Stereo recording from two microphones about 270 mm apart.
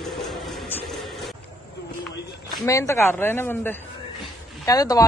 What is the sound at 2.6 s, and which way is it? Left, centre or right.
A woman's voice, centre.